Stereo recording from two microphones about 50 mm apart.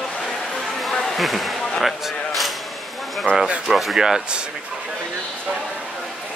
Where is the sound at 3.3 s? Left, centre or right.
Left.